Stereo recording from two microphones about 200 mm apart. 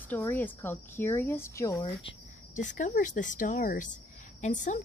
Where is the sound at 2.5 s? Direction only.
40° left (ahead or behind).